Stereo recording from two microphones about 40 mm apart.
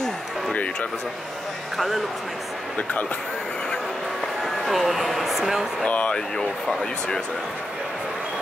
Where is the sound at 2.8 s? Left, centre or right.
Left.